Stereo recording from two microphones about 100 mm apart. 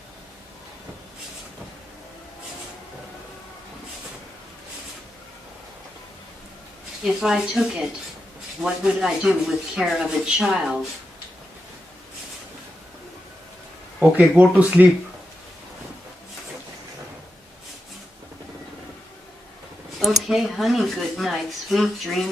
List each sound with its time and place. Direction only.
7.0 s speech: 5° right (ahead or behind)
13.9 s speech: 15° right (ahead or behind)
20.0 s speech: centre (ahead or behind)